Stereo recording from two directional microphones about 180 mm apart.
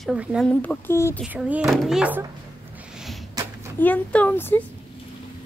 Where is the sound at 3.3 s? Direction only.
20° right (ahead or behind).